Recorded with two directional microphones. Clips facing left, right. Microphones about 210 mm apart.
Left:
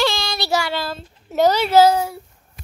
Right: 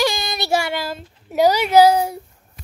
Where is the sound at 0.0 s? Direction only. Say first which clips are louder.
Even; 15° right (ahead or behind).